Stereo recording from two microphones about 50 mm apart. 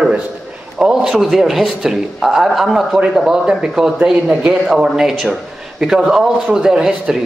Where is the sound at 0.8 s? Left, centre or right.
Centre.